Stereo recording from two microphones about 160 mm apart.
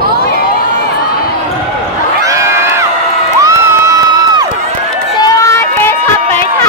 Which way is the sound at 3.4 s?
20° right (ahead or behind).